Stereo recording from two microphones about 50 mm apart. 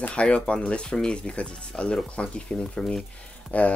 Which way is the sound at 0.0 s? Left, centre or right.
Left.